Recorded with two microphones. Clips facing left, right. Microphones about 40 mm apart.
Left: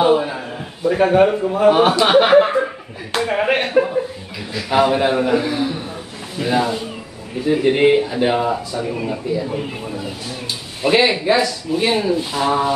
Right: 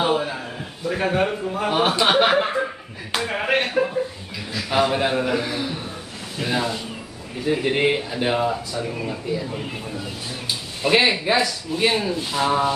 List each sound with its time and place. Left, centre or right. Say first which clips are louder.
0.0 s speech: left 6 dB; centre
3.1 s slap: left 5 dB; centre
4.6 s a man's voice: left 5 dB; centre